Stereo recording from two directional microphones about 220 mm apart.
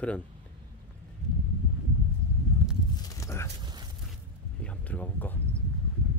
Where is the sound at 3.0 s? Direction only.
15° left (ahead or behind).